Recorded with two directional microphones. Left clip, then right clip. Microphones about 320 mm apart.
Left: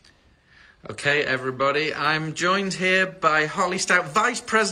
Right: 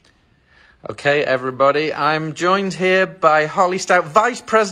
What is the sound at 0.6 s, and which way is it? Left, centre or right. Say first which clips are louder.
Speech: right 5 dB; centre.